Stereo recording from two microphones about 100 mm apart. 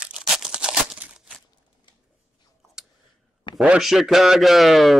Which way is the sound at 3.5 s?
50° left (ahead or behind).